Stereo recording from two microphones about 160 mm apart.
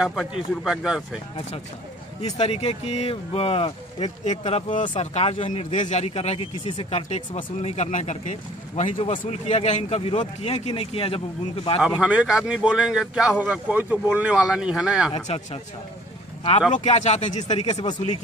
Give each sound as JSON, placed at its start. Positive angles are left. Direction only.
{"t": 0.0, "sound": "a man's voice", "side_deg": 0}
{"t": 2.2, "sound": "speech", "side_deg": 40}
{"t": 8.9, "sound": "speech", "side_deg": 35}
{"t": 11.8, "sound": "a man's voice", "side_deg": -5}
{"t": 15.1, "sound": "speech", "side_deg": 40}
{"t": 16.7, "sound": "speech", "side_deg": 45}